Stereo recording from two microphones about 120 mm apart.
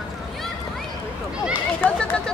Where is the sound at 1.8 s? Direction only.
10° left (ahead or behind).